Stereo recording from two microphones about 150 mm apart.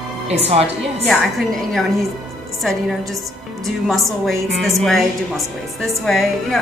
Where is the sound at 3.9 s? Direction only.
Centre (ahead or behind).